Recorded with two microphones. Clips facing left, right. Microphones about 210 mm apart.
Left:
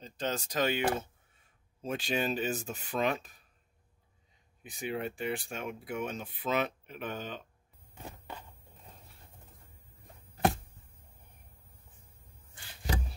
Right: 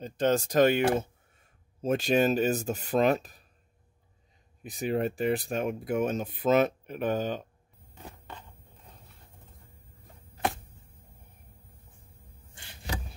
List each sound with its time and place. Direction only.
0.0 s speech: 50° right (ahead or behind)
4.6 s speech: 40° right (ahead or behind)